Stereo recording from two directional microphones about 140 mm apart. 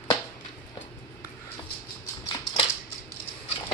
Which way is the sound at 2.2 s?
35° left (ahead or behind).